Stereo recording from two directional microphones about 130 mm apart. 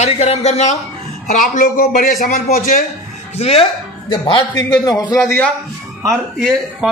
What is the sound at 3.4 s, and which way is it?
Speech, 50° left (ahead or behind).